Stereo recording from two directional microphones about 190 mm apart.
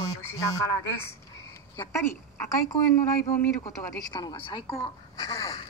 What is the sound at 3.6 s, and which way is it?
Speech, 20° left (ahead or behind).